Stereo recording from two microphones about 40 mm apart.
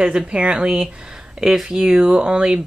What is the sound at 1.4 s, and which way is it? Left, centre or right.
Speech, centre.